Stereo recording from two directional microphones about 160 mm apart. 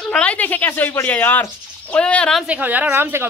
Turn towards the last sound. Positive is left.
turn(degrees=-15)  # may be behind; listen again after turning